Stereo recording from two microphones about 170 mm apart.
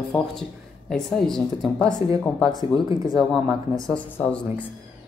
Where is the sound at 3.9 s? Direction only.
5° left (ahead or behind).